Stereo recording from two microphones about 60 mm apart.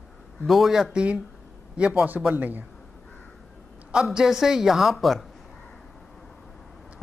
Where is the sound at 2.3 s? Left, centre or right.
Right.